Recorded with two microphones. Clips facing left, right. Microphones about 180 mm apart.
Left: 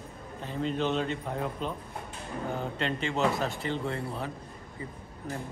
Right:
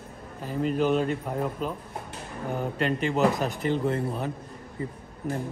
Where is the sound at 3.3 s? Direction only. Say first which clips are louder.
Right 5 dB; 20° right (ahead or behind).